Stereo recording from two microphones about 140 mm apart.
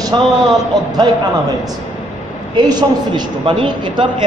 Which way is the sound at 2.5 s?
35° right (ahead or behind).